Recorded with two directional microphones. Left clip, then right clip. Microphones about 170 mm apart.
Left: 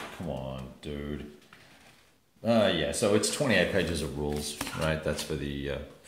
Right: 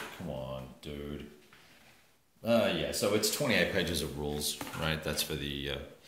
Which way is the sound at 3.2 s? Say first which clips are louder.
Left 3 dB; 30° left (ahead or behind).